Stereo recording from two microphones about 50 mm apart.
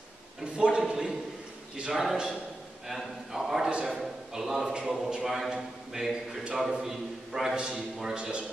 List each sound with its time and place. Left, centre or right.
0.4 s a man's voice: centre